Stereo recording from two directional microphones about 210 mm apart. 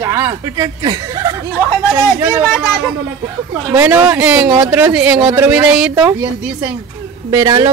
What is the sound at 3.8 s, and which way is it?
A man's voice, 10° right (ahead or behind).